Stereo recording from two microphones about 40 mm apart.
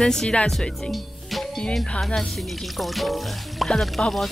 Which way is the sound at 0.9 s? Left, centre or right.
Centre.